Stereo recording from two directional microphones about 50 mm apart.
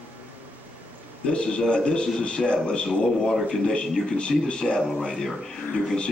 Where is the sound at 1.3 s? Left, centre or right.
Centre.